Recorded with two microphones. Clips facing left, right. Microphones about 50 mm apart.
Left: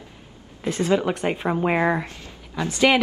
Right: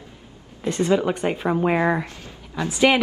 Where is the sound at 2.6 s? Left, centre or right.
Centre.